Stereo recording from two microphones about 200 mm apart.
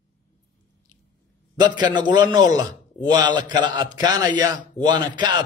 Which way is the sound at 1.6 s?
20° right (ahead or behind).